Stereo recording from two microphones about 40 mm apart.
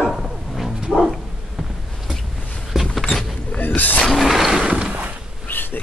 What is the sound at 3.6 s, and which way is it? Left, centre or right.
Speech, left.